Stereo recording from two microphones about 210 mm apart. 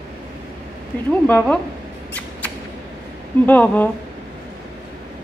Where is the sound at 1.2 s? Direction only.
5° left (ahead or behind).